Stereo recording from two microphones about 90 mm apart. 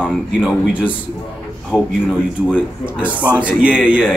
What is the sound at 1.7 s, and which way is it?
Speech, 15° left (ahead or behind).